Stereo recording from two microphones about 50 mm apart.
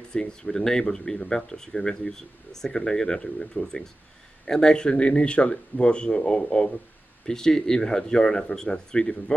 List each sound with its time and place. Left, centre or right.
0.1 s speech: centre